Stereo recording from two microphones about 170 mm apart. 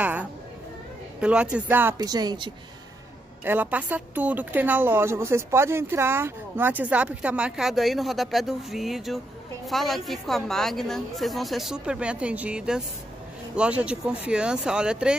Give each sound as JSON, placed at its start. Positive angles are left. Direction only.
{"t": 0.0, "sound": "a sound", "side_deg": -10}
{"t": 1.2, "sound": "speech", "side_deg": -5}
{"t": 2.0, "sound": "speech", "side_deg": -25}
{"t": 3.4, "sound": "a woman's voice", "side_deg": -10}